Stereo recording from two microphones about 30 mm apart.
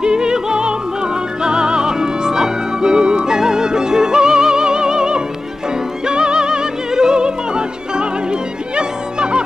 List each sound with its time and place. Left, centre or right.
0.0 s music: right